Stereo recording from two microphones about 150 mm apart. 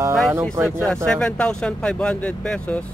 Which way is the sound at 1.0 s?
5° left (ahead or behind).